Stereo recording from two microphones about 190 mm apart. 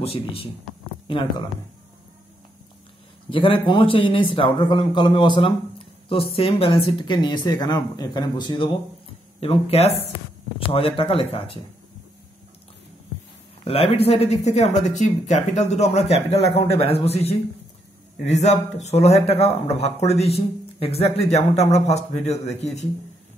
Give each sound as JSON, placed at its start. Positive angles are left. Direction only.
{"t": 0.0, "sound": "speech", "side_deg": 30}
{"t": 3.3, "sound": "speech", "side_deg": 25}
{"t": 13.7, "sound": "speech", "side_deg": 30}